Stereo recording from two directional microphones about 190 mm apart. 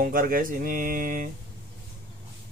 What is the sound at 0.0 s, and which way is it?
Speech, 50° right (ahead or behind).